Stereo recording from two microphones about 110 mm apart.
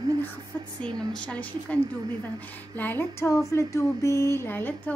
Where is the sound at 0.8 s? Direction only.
10° left (ahead or behind).